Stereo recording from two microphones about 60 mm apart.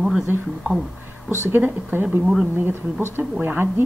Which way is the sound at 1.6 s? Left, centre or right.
Right.